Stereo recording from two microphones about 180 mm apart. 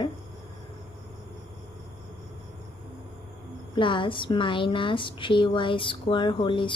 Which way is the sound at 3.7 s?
30° left (ahead or behind).